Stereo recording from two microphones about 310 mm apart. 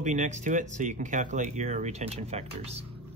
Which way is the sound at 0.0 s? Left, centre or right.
Right.